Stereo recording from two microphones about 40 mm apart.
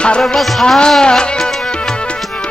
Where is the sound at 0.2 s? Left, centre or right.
Centre.